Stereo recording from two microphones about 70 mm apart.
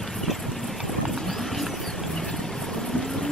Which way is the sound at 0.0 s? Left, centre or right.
Centre.